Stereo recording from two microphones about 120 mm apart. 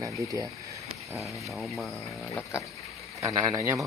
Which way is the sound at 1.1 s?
Centre (ahead or behind).